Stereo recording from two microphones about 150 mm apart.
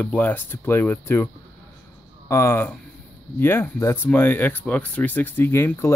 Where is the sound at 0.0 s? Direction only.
10° left (ahead or behind).